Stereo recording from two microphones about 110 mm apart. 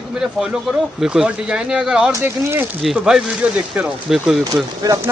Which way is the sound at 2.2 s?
15° right (ahead or behind).